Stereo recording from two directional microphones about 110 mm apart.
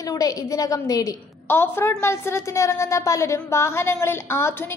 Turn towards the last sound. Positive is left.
turn(degrees=20)  # may be behind; listen again after turning